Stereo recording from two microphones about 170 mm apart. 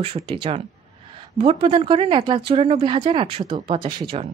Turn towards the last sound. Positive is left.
turn(degrees=-30)  # may be behind; listen again after turning